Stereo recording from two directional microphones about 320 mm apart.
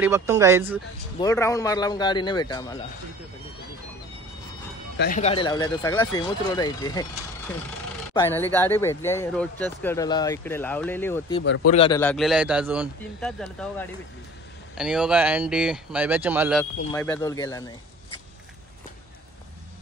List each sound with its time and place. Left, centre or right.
0.0 s speech: centre
1.2 s speech: centre
4.9 s speech: left; by 7.1 s centre
8.1 s speech: centre
11.4 s a man's voice: left
11.7 s speech: centre
12.0 s speech: centre